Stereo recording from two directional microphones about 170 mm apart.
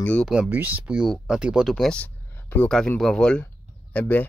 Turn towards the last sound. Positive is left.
turn(degrees=10)  # may be behind; listen again after turning